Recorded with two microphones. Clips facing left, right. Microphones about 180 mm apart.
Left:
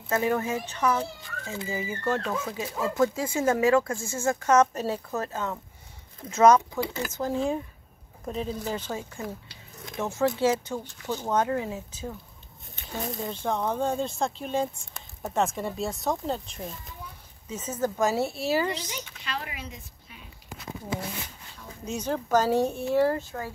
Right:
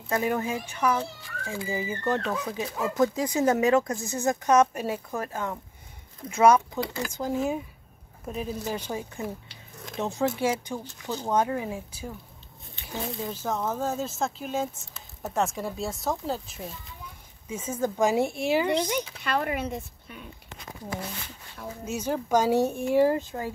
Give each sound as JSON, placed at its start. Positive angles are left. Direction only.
{"t": 0.1, "sound": "speech", "side_deg": -15}
{"t": 13.3, "sound": "speech", "side_deg": -5}
{"t": 18.7, "sound": "speech", "side_deg": -55}
{"t": 21.8, "sound": "speech", "side_deg": -10}